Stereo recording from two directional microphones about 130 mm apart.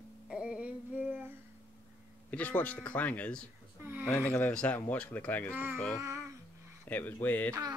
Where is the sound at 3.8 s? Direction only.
15° right (ahead or behind).